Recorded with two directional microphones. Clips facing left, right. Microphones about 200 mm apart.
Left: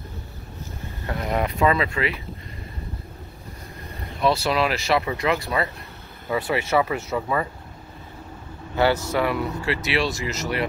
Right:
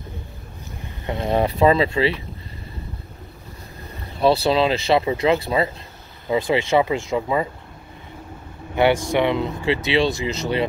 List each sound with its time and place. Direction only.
1.0 s speech: 25° right (ahead or behind)
4.2 s speech: 30° right (ahead or behind)
8.7 s speech: 25° right (ahead or behind)